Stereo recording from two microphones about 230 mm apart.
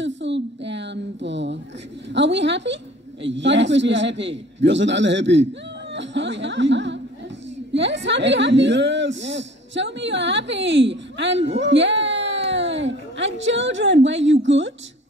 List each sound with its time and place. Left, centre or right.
0.0 s a woman's voice: right